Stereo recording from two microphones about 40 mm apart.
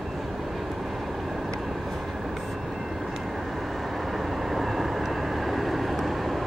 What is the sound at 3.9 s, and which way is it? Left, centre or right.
Vehicle, centre.